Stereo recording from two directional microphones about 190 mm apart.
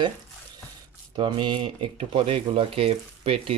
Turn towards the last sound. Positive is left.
turn(degrees=-30)  # may be behind; listen again after turning